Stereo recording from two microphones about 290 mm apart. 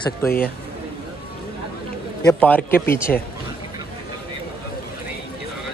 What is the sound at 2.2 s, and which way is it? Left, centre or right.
A man's voice, centre.